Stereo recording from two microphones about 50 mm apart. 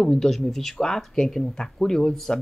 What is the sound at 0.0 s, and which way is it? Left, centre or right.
Speech, centre.